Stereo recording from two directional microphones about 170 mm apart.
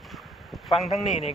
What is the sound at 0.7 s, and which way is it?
Speech, 35° left (ahead or behind).